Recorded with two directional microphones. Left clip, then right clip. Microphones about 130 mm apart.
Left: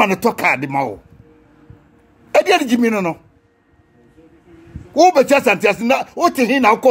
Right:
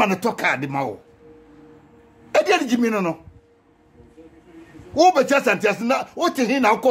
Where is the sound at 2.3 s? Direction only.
30° left (ahead or behind).